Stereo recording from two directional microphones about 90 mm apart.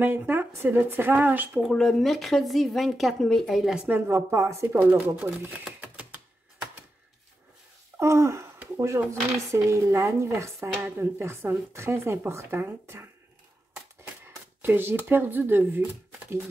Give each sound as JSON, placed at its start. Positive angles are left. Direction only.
{"t": 0.0, "sound": "speech", "side_deg": -25}
{"t": 1.6, "sound": "speech", "side_deg": 5}
{"t": 3.8, "sound": "speech", "side_deg": -25}
{"t": 5.4, "sound": "typewriter", "side_deg": -15}
{"t": 8.0, "sound": "speech", "side_deg": -30}
{"t": 14.2, "sound": "speech", "side_deg": -25}